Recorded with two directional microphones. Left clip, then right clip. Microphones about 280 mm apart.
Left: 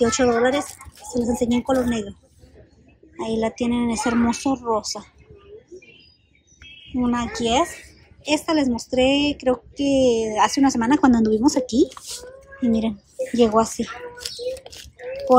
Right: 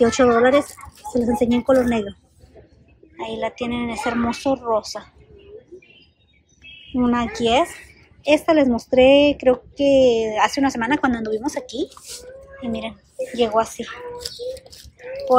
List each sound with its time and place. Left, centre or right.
0.0 s speech: centre
3.2 s speech: centre
7.0 s speech: centre